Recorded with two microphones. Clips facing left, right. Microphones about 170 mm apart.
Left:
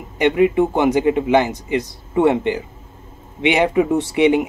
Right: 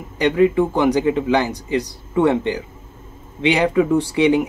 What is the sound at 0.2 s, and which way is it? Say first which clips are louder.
Speech: left 1 dB; 20° left (ahead or behind).